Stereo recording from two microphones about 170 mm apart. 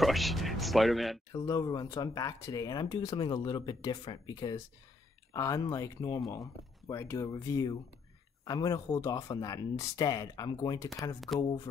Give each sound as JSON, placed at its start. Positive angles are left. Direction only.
{"t": 0.0, "sound": "speech", "side_deg": 0}
{"t": 1.3, "sound": "speech", "side_deg": 20}